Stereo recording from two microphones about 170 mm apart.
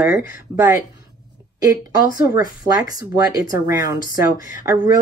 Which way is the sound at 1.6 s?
20° right (ahead or behind).